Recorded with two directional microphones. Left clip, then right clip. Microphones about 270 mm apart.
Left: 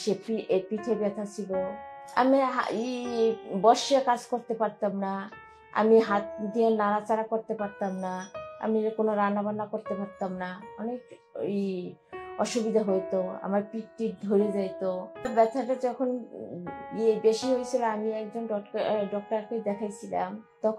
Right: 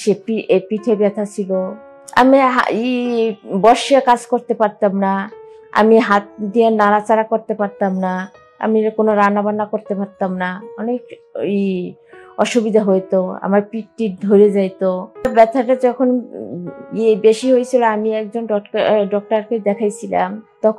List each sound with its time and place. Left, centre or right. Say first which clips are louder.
0.8 s a woman's voice: right 13 dB; right